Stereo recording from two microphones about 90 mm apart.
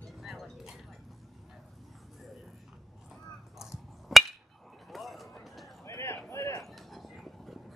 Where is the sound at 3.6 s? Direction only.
5° right (ahead or behind).